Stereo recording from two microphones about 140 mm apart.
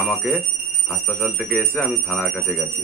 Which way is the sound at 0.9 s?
15° left (ahead or behind).